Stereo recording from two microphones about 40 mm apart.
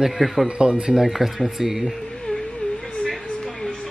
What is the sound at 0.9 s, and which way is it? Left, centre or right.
Speech, centre.